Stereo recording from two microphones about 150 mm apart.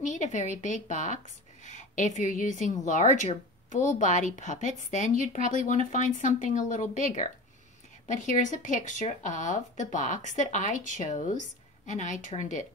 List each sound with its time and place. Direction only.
0.0 s speech: 55° left (ahead or behind)